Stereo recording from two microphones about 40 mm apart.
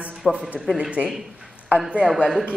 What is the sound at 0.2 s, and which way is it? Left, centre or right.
Speech, centre.